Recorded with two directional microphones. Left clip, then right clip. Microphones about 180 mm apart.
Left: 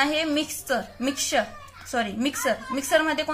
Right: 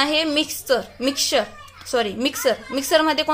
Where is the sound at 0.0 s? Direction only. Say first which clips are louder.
Right 4 dB; 45° right (ahead or behind).